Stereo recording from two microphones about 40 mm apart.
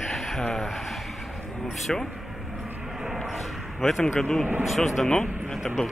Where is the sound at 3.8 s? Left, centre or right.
Centre.